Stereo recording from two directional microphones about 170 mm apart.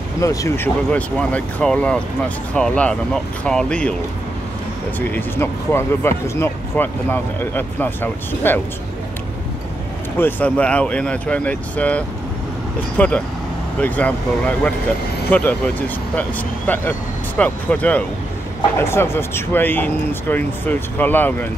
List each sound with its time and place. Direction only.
0.2 s speech: 20° left (ahead or behind)
0.8 s speech: 5° left (ahead or behind)
4.9 s speech: 10° left (ahead or behind)
10.1 s speech: 10° left (ahead or behind)